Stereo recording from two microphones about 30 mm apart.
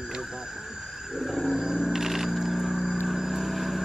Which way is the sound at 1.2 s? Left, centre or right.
Centre.